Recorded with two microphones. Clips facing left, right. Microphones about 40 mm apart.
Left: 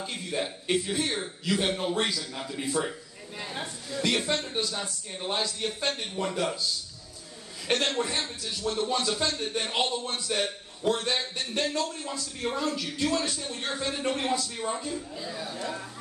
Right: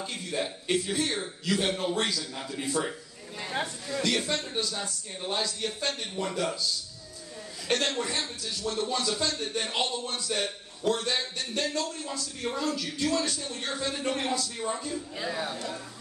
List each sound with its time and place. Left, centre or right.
0.0 s a man's voice: centre
4.1 s speech: left
7.6 s speech: left
15.1 s speech: right